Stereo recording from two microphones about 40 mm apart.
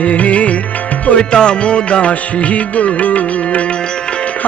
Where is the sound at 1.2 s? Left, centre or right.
Left.